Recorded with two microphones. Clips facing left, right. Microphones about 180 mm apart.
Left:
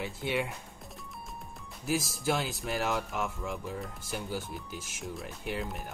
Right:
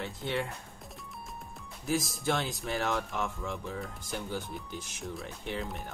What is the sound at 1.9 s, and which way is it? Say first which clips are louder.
Speech: even; centre (ahead or behind).